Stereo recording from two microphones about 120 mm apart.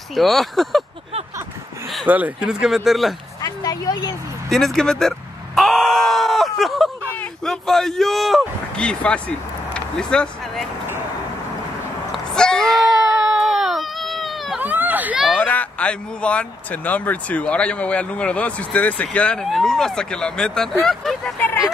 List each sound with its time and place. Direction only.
0.1 s speech: centre (ahead or behind)
2.0 s speech: 15° right (ahead or behind)
3.4 s vehicle: 30° left (ahead or behind)
4.5 s groan: centre (ahead or behind)
7.4 s speech: 5° left (ahead or behind)
9.8 s a sound: 5° left (ahead or behind)
12.1 s baby cry: 5° left (ahead or behind)
14.6 s a sound: 15° right (ahead or behind)
15.4 s speech: 10° left (ahead or behind)